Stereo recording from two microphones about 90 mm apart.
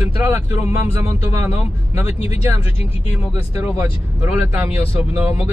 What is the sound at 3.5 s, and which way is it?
Speech, 30° right (ahead or behind).